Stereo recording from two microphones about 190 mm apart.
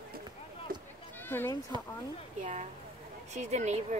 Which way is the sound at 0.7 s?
50° right (ahead or behind).